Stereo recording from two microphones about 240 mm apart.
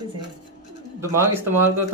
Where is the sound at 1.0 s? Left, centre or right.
Centre.